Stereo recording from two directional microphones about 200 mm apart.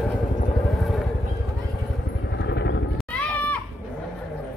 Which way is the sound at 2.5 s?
60° left (ahead or behind).